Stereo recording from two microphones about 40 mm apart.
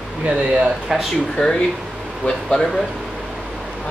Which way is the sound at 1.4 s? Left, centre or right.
Centre.